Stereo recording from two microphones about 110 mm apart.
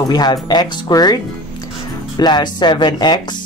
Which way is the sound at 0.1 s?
40° left (ahead or behind).